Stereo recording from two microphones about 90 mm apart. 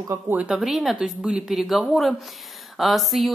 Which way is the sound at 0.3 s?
15° right (ahead or behind).